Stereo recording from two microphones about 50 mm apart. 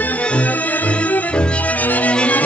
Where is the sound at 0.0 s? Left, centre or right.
Left.